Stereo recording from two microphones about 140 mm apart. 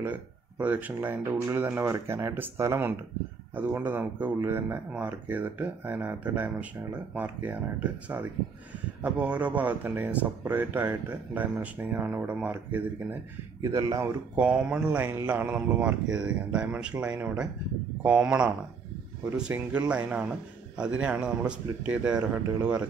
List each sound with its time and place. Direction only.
0.0 s speech: 10° right (ahead or behind)
13.6 s speech: 25° right (ahead or behind)
14.3 s speech: 10° right (ahead or behind)